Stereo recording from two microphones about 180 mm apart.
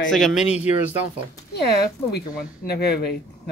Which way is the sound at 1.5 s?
65° left (ahead or behind).